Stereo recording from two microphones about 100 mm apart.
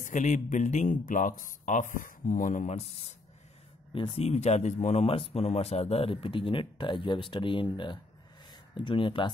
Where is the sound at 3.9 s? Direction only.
70° left (ahead or behind).